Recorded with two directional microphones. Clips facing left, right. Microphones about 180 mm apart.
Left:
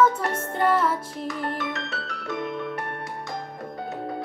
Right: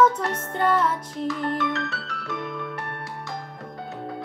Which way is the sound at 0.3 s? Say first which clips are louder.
Even; 5° left (ahead or behind).